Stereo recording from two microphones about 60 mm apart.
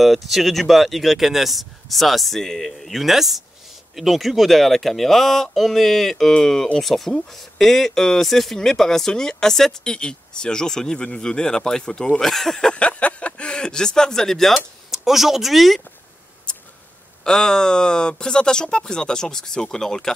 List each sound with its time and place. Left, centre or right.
0.0 s speech: centre
14.9 s speech: centre
16.5 s a sound: centre
17.2 s speech: centre